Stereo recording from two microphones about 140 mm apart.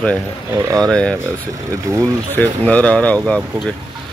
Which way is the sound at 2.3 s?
10° left (ahead or behind).